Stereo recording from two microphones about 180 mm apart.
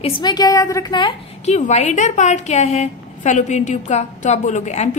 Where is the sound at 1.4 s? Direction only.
40° left (ahead or behind).